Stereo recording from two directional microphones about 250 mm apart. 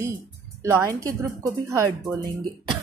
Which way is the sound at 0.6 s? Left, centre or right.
Centre.